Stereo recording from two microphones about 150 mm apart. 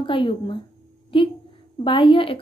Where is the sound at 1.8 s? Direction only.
35° left (ahead or behind).